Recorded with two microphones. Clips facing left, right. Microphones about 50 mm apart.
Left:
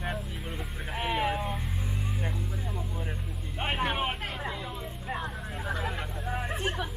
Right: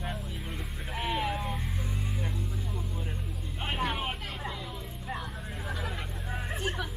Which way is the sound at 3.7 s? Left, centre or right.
Centre.